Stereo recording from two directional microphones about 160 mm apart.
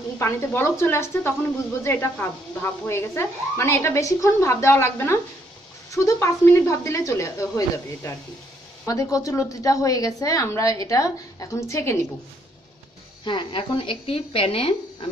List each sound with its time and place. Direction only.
0.2 s a woman's voice: 15° left (ahead or behind)
13.2 s speech: 30° left (ahead or behind)